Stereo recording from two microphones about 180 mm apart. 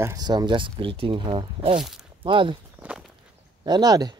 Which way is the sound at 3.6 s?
25° right (ahead or behind).